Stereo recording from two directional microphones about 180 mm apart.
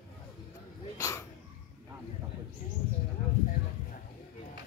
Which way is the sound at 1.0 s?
15° left (ahead or behind).